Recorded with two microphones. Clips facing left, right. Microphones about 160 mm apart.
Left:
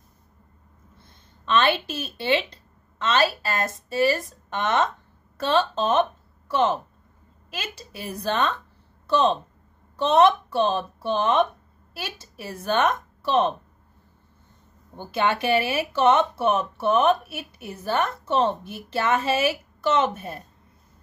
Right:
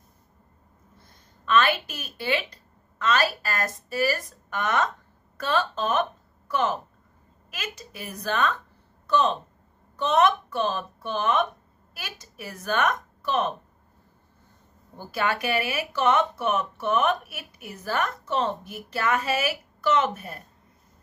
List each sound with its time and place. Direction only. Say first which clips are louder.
0.9 s a woman's voice: even; 25° left (ahead or behind)
15.0 s speech: left 3 dB; 25° left (ahead or behind)